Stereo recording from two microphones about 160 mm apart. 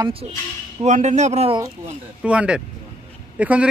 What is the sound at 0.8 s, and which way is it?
Speech, 45° right (ahead or behind).